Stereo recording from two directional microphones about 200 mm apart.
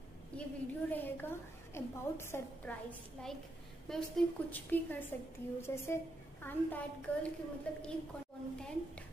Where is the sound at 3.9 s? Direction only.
Centre (ahead or behind).